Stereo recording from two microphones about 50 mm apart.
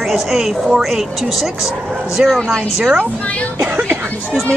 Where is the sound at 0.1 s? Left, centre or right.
Centre.